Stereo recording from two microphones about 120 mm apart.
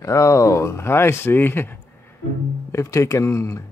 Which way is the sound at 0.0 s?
25° left (ahead or behind).